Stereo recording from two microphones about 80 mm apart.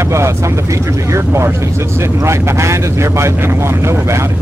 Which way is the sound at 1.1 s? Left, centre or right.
Right.